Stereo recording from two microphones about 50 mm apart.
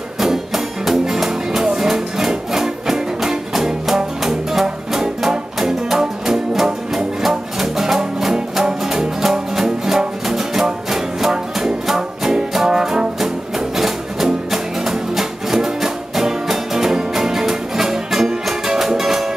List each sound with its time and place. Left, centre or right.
0.2 s music: centre